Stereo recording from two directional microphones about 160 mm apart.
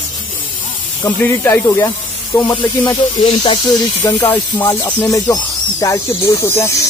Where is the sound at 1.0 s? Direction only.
20° left (ahead or behind).